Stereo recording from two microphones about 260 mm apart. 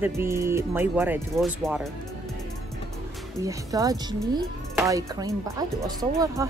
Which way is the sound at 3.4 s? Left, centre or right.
Centre.